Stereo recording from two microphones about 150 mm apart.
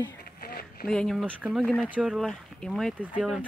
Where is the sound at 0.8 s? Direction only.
5° left (ahead or behind).